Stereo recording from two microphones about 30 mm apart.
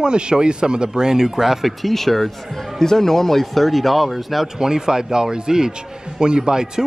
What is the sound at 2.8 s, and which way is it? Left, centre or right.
Speech, centre.